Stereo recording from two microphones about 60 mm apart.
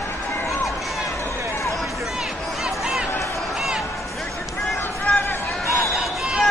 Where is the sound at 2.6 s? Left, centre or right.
Centre.